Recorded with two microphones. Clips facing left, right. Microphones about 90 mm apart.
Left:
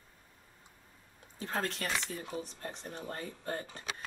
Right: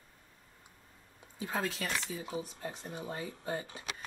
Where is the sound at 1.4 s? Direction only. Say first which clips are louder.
Even; 10° right (ahead or behind).